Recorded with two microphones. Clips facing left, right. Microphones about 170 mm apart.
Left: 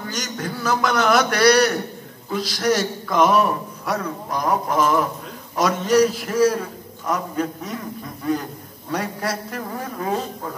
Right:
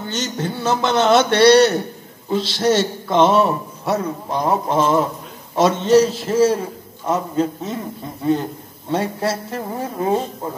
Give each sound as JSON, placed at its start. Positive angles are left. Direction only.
{"t": 0.0, "sound": "a man's voice", "side_deg": -25}